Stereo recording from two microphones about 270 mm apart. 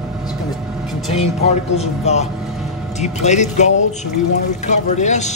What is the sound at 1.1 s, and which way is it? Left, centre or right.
Speech, left.